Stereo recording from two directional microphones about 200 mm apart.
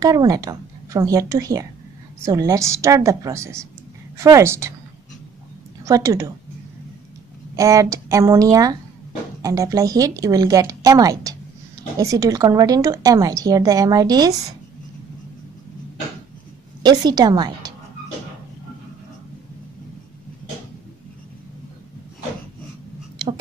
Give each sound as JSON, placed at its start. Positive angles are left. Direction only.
{"t": 0.0, "sound": "a woman's voice", "side_deg": -15}
{"t": 5.9, "sound": "a woman's voice", "side_deg": -15}
{"t": 7.5, "sound": "a woman's voice", "side_deg": -15}
{"t": 16.8, "sound": "a woman's voice", "side_deg": -20}